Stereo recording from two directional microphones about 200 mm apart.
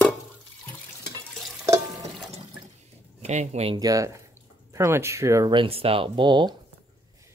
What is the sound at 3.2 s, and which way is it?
Speech, 35° right (ahead or behind).